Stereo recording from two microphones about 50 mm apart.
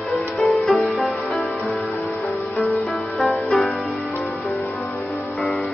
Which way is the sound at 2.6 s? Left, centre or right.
Centre.